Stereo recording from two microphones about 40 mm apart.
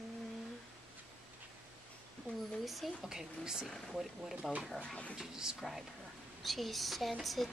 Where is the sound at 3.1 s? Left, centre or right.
Centre.